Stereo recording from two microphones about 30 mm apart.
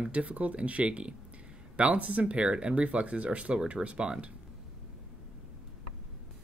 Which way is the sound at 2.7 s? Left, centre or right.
Right.